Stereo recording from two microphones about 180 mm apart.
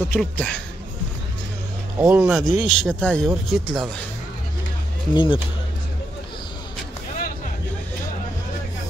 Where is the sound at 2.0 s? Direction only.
5° right (ahead or behind).